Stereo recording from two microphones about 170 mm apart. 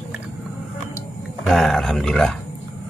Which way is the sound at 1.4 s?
Centre (ahead or behind).